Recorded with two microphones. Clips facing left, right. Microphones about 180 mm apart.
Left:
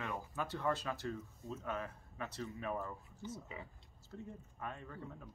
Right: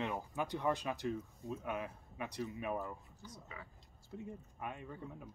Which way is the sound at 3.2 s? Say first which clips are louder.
Left 11 dB; 20° left (ahead or behind).